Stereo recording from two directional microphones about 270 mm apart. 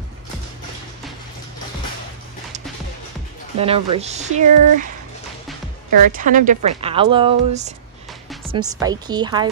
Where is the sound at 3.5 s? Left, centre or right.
Right.